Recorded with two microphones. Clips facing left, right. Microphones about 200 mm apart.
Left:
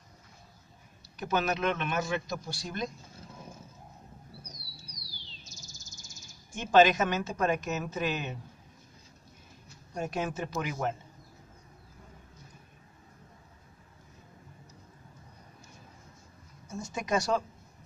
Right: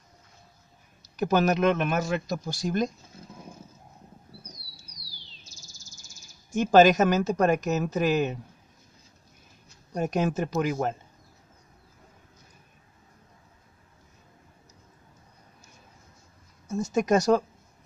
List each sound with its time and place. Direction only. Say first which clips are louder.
1.2 s speech: right 7 dB; 40° right (ahead or behind)
6.5 s speech: right 5 dB; 40° right (ahead or behind)
10.1 s speech: right 8 dB; 40° right (ahead or behind)
16.7 s speech: right 8 dB; 40° right (ahead or behind)